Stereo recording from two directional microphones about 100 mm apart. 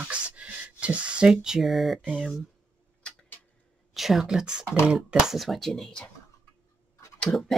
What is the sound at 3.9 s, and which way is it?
Speech, 5° right (ahead or behind).